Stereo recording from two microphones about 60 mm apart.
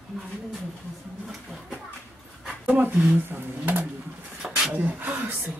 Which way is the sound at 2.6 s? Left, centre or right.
Right.